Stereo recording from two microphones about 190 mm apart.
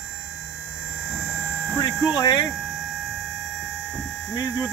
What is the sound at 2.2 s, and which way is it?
Speech, 20° left (ahead or behind).